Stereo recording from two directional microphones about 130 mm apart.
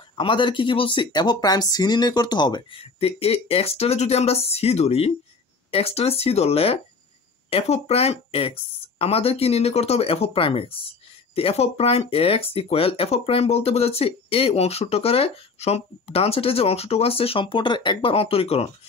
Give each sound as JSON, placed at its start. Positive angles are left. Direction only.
{"t": 0.1, "sound": "speech", "side_deg": 40}
{"t": 2.8, "sound": "speech", "side_deg": 50}